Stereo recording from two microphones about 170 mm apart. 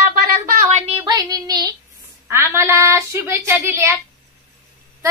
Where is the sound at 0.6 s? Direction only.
40° right (ahead or behind).